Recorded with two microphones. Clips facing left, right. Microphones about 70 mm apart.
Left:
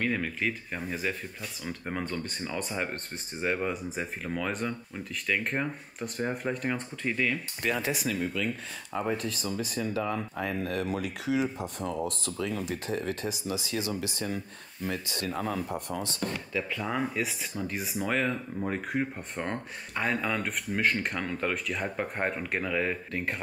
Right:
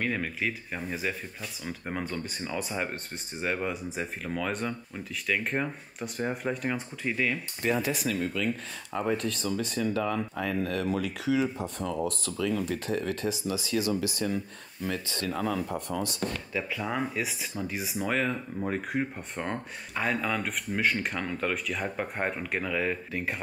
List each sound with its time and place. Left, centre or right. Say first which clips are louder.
0.0 s speech: left 1 dB; centre
10.4 s speech: right 1 dB; left
16.5 s speech: even; centre